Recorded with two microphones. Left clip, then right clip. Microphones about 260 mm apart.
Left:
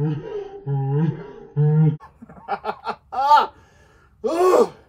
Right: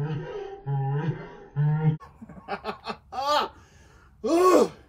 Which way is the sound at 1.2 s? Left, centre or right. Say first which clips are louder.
Left 8 dB; right.